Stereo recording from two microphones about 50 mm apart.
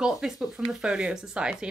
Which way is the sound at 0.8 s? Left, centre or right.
Centre.